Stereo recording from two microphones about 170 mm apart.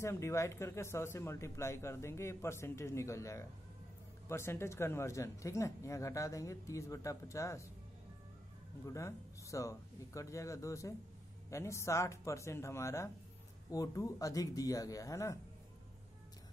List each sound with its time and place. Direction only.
0.0 s speech: 15° left (ahead or behind)
8.8 s speech: 20° left (ahead or behind)